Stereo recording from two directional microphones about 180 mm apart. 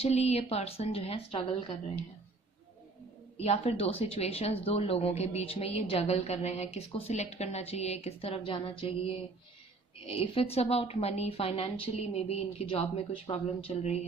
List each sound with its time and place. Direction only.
0.0 s speech: 35° left (ahead or behind)
3.3 s speech: 35° left (ahead or behind)